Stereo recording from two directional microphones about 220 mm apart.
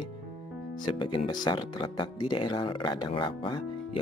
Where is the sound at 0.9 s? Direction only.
20° left (ahead or behind).